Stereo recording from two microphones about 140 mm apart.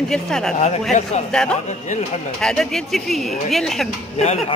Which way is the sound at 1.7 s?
55° left (ahead or behind).